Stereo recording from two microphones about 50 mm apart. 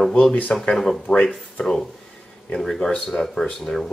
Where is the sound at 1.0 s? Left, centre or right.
Centre.